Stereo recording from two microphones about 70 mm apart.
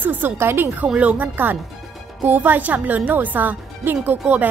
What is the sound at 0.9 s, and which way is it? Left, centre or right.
A woman's voice, right.